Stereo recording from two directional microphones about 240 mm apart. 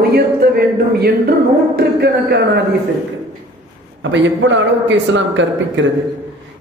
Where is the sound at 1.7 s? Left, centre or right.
Right.